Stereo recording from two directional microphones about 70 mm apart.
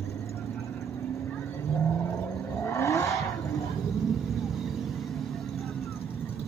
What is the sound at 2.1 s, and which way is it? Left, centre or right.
Vehicle, left.